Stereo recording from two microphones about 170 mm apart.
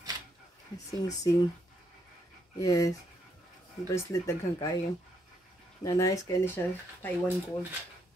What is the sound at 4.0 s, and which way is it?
Speech, 15° left (ahead or behind).